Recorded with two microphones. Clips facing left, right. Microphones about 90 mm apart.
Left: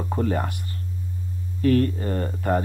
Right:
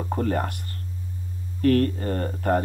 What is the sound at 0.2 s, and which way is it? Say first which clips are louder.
Speech: left 1 dB; 50° right (ahead or behind).